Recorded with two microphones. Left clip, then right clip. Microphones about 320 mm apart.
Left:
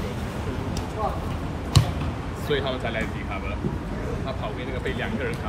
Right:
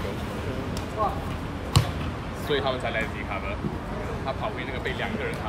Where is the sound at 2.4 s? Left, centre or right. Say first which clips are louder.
Even; right.